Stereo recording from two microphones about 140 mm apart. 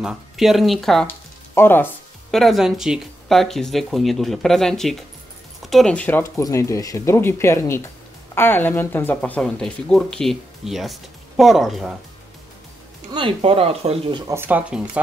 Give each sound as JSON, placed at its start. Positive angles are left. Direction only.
{"t": 0.0, "sound": "speech", "side_deg": -5}
{"t": 1.0, "sound": "a sound", "side_deg": 15}
{"t": 2.3, "sound": "speech", "side_deg": 0}
{"t": 13.1, "sound": "speech", "side_deg": -40}
{"t": 14.2, "sound": "speech", "side_deg": -15}